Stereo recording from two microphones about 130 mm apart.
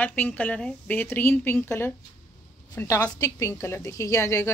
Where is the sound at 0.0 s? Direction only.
10° left (ahead or behind).